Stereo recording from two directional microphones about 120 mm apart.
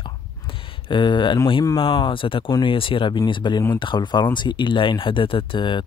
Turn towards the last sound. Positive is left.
turn(degrees=45)  # may be behind; listen again after turning